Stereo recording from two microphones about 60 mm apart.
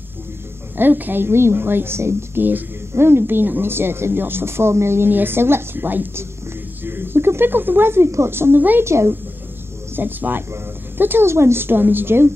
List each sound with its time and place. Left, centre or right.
0.7 s speech: right
8.8 s a woman's voice: right
9.9 s speech: right